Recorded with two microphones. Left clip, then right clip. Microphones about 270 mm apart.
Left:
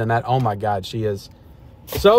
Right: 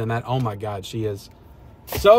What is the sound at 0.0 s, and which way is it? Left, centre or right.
Speech, centre.